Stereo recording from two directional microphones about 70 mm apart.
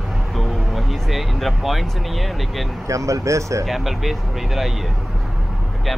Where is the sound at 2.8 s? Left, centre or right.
Right.